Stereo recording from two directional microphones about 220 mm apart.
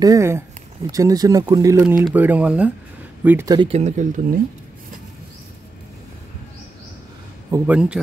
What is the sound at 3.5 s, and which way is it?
Speech, 25° right (ahead or behind).